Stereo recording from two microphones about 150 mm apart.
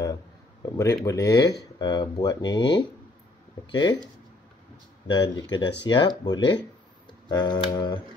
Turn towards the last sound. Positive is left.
turn(degrees=30)  # may be behind; listen again after turning